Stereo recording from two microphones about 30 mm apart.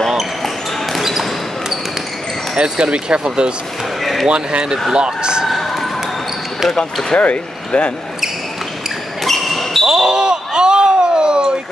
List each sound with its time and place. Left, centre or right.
0.9 s basketball bounce: centre
2.5 s speech: right
4.0 s basketball bounce: centre
4.3 s speech: right
5.5 s basketball bounce: centre
6.7 s speech: centre
7.2 s speech: left
9.2 s basketball bounce: centre
9.8 s a sound: right